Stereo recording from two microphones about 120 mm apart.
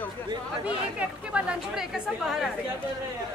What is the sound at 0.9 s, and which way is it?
Speech, 10° right (ahead or behind).